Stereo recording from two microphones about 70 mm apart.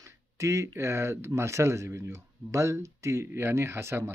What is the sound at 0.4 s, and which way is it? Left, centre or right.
Speech, right.